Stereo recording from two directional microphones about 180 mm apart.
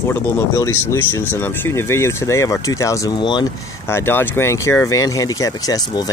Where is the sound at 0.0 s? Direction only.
15° left (ahead or behind).